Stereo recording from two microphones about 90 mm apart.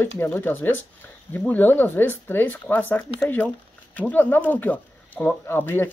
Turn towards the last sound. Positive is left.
turn(degrees=25)  # may be behind; listen again after turning